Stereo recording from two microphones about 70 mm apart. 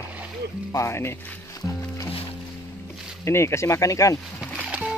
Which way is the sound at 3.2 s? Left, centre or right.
Left.